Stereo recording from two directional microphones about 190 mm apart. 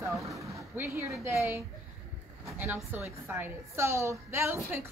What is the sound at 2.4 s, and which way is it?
A woman's voice, 10° right (ahead or behind).